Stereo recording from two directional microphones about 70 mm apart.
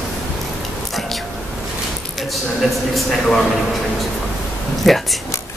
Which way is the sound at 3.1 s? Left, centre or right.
Centre.